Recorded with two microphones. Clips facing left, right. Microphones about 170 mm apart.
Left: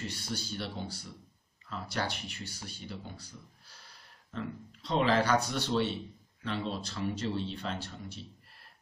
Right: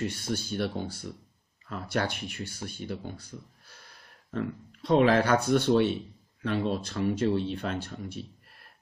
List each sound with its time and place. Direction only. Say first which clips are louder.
0.0 s speech: right 7 dB; 55° right (ahead or behind)